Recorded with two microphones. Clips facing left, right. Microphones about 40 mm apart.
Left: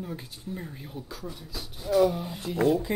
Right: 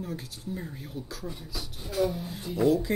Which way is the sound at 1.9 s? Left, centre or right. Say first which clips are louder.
Left 6 dB; left.